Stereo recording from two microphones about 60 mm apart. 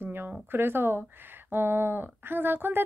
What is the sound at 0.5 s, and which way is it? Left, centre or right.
Speech, right.